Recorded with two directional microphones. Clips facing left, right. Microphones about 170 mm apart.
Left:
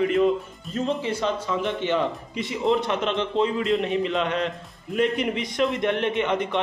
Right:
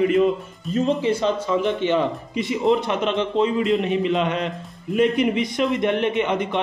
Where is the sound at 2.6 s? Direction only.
5° right (ahead or behind).